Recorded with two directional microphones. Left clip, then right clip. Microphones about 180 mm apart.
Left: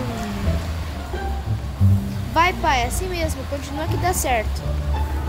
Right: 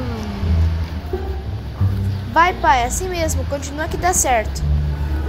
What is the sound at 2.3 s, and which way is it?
A woman's voice, 15° left (ahead or behind).